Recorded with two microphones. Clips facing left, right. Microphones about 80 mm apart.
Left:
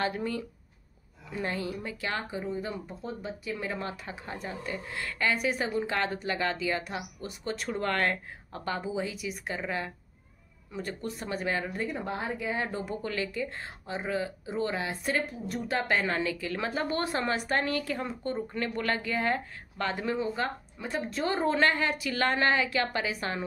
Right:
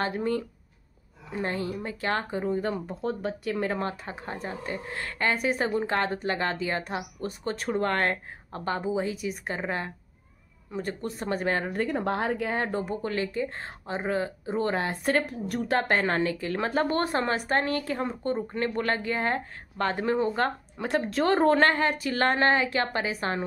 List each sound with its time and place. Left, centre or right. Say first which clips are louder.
0.0 s speech: right 3 dB; right
12.6 s speech: right 4 dB; right
15.2 s speech: right 4 dB; right